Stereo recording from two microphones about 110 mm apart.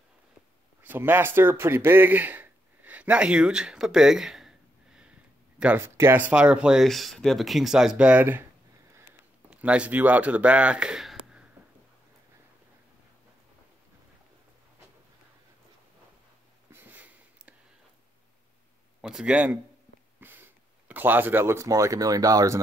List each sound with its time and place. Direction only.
0.8 s speech: 20° right (ahead or behind)
5.8 s speech: 25° right (ahead or behind)
9.5 s speech: 10° right (ahead or behind)
16.7 s a sound: 15° right (ahead or behind)
18.9 s speech: 5° right (ahead or behind); by 22.6 s 30° right (ahead or behind)